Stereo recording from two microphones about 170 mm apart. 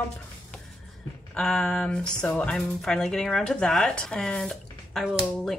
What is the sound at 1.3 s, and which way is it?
Speech, 5° left (ahead or behind).